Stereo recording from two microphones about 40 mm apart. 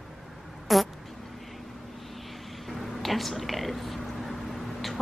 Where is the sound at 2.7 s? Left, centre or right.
Centre.